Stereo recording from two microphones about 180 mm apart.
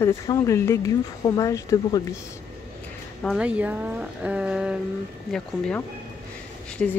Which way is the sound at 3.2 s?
5° right (ahead or behind).